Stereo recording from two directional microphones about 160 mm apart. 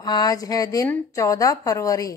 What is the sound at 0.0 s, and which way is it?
Speech, 25° left (ahead or behind).